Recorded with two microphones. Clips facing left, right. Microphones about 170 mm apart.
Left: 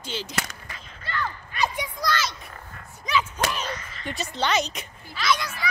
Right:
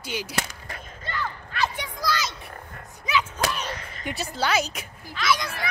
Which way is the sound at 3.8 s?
50° right (ahead or behind).